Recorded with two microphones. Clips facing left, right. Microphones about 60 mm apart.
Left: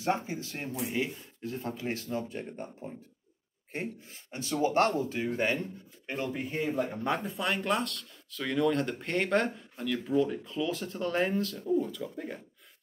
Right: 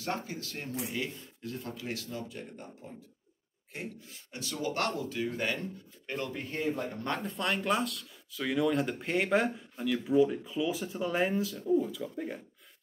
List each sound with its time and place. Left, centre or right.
0.0 s speech: left; by 12.4 s centre